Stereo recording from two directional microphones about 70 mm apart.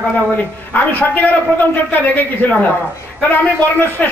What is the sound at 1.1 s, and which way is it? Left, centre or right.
A man's voice, left.